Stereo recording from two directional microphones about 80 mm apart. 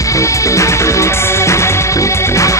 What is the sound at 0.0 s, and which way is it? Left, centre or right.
Music, left.